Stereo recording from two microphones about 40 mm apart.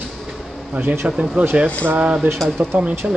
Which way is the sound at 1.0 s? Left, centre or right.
Right.